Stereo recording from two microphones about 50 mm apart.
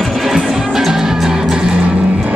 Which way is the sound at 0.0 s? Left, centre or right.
Centre.